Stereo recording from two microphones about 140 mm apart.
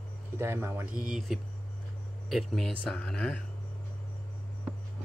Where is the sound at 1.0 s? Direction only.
5° right (ahead or behind).